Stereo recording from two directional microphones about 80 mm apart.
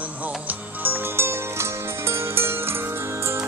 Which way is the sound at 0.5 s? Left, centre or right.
Right.